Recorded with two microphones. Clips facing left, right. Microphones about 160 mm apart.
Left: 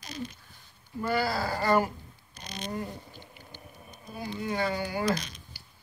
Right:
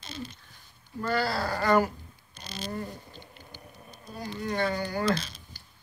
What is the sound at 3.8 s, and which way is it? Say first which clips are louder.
Speech: left 1 dB; 10° left (ahead or behind).